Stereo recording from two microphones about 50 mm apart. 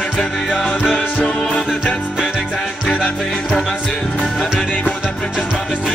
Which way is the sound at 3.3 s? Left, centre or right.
Centre.